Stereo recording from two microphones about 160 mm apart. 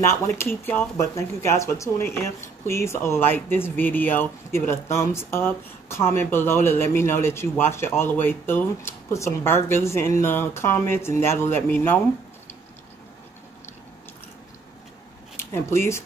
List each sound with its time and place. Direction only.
0.0 s speech: 15° left (ahead or behind)
15.3 s speech: 15° left (ahead or behind)